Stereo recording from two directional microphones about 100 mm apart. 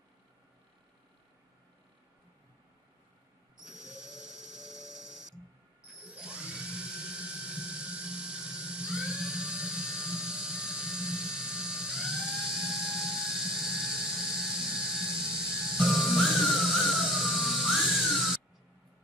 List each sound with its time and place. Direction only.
5.9 s ratchet: 10° right (ahead or behind)
6.2 s drill: 10° right (ahead or behind)